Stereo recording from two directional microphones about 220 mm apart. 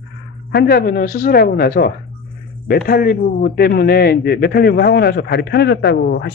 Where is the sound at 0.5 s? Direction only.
45° left (ahead or behind).